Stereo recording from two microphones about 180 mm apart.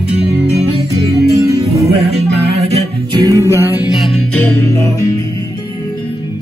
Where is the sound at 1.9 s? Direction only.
35° right (ahead or behind).